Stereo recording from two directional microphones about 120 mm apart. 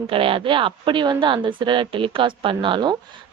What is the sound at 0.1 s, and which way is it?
Speech, 50° right (ahead or behind).